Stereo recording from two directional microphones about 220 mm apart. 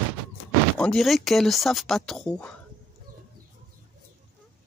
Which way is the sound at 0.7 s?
Centre (ahead or behind).